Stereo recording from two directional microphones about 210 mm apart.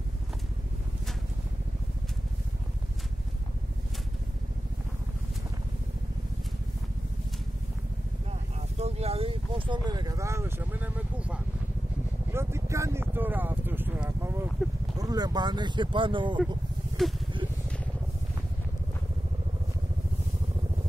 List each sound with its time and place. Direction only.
8.3 s a sound: 30° right (ahead or behind); by 14.4 s 10° right (ahead or behind)
15.0 s speech: 20° right (ahead or behind)
17.0 s vehicle: centre (ahead or behind)